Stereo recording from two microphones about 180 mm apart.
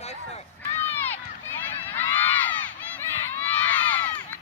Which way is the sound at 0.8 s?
10° left (ahead or behind).